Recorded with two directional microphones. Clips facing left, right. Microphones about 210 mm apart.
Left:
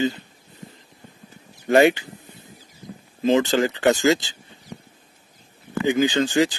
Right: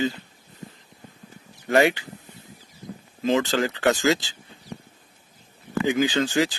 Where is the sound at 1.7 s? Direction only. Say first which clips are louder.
Left 4 dB; 25° left (ahead or behind).